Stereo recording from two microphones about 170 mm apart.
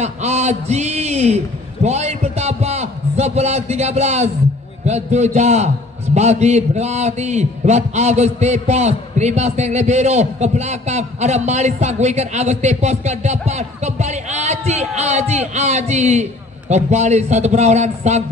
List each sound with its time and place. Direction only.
0.0 s a man's voice: 40° right (ahead or behind)